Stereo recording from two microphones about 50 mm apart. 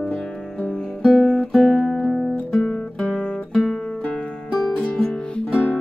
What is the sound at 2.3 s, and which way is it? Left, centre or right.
Guitar, left.